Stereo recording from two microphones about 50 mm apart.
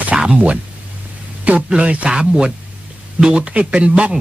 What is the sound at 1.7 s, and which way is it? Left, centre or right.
Speech, right.